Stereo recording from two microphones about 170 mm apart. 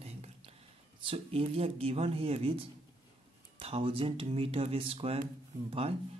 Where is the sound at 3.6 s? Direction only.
35° right (ahead or behind).